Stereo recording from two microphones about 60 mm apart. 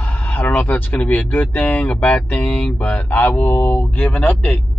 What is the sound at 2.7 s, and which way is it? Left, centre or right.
A man's voice, left.